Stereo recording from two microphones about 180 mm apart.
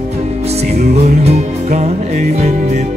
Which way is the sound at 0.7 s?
35° right (ahead or behind).